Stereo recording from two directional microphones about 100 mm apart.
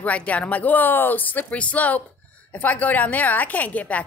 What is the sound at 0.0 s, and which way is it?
Speech, 15° left (ahead or behind).